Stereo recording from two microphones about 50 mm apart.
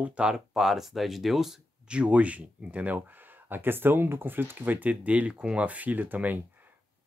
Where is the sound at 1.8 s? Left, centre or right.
Right.